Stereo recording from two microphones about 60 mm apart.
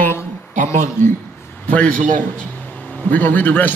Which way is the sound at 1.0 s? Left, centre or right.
Left.